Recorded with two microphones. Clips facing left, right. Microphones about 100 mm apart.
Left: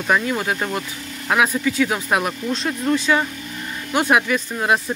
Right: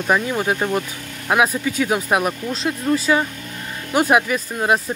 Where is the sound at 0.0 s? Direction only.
15° right (ahead or behind).